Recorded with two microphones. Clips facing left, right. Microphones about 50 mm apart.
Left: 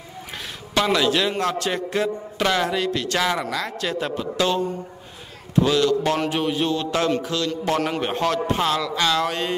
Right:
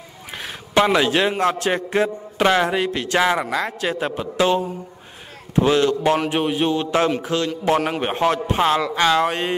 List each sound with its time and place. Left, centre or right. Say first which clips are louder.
0.4 s a sound: right 5 dB; right
1.4 s a man's voice: right 4 dB; right
5.6 s a man's voice: right 2 dB; right